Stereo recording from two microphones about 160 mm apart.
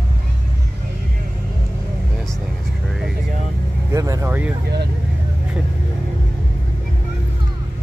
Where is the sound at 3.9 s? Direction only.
20° right (ahead or behind).